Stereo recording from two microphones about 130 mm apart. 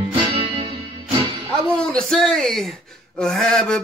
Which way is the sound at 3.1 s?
5° left (ahead or behind).